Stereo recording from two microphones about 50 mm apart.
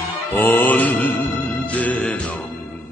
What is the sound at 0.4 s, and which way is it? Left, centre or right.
Mantra, left.